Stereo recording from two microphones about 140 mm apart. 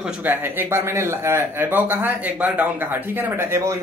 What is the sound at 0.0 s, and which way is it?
Speech, 15° right (ahead or behind).